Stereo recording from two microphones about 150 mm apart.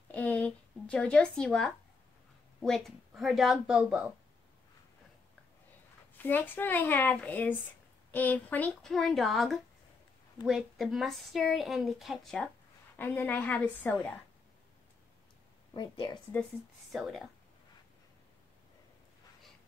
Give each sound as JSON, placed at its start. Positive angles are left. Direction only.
{"t": 0.1, "sound": "speech", "side_deg": 10}
{"t": 6.2, "sound": "speech", "side_deg": 10}
{"t": 12.9, "sound": "speech", "side_deg": 15}
{"t": 15.7, "sound": "a woman's voice", "side_deg": 30}
{"t": 16.9, "sound": "speech", "side_deg": 0}